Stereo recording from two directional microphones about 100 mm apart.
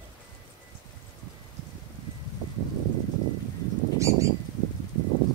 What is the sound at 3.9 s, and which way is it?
Bird flight, 30° right (ahead or behind).